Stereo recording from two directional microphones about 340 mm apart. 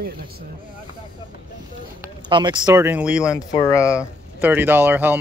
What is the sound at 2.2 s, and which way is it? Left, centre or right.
Speech, centre.